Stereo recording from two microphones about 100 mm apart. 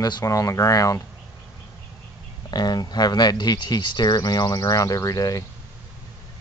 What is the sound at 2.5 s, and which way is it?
Speech, 45° left (ahead or behind).